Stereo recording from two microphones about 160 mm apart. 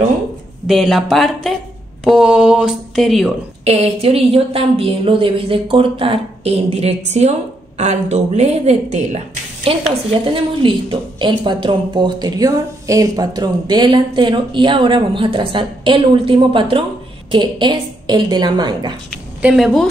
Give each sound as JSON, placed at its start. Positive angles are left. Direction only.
{"t": 0.7, "sound": "mantra", "side_deg": 0}
{"t": 3.6, "sound": "a woman's voice", "side_deg": -40}
{"t": 10.2, "sound": "a woman's voice", "side_deg": -30}
{"t": 19.4, "sound": "mantra", "side_deg": 0}